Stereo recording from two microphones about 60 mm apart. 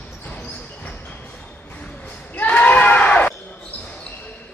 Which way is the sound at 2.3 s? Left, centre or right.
Left.